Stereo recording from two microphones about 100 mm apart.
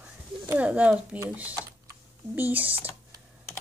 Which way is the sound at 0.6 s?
15° right (ahead or behind).